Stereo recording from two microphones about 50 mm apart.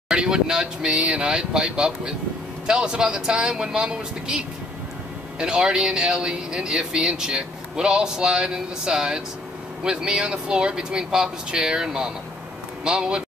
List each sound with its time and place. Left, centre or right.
0.1 s speech: centre